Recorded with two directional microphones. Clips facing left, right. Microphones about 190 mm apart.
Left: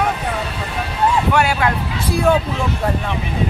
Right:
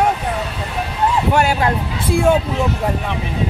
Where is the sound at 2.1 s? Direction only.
25° right (ahead or behind).